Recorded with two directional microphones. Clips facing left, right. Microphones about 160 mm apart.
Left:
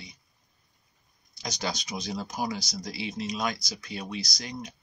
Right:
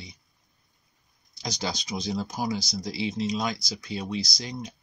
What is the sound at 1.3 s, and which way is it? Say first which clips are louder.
Speech: right 1 dB; 30° right (ahead or behind).